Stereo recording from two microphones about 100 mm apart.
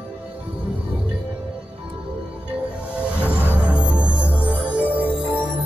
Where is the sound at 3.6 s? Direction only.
10° right (ahead or behind).